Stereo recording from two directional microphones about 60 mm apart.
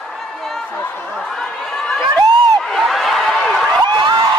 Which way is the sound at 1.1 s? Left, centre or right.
Centre.